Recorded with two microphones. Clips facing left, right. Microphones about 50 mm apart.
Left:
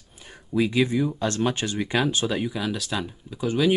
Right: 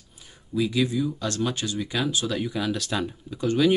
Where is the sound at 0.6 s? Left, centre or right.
Left.